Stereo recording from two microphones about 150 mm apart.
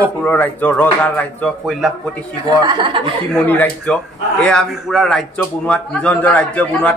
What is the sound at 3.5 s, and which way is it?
Music, 10° left (ahead or behind).